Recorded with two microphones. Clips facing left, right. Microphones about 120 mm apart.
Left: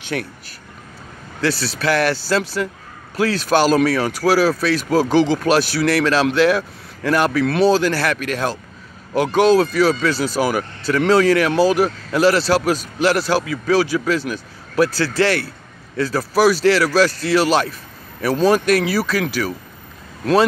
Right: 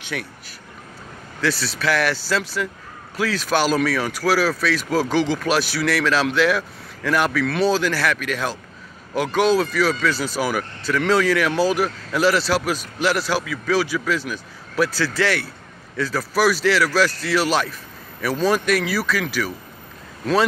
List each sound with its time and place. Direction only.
0.1 s speech: 40° left (ahead or behind)
1.5 s speech: 30° left (ahead or behind)